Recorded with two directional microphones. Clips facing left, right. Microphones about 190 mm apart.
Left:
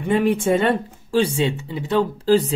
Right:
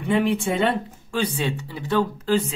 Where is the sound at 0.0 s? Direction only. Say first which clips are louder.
Left 3 dB; 45° left (ahead or behind).